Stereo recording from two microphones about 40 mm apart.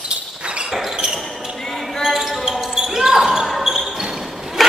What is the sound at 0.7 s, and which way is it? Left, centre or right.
Basketball bounce, centre.